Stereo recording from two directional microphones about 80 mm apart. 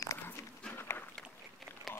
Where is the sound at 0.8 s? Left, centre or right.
Left.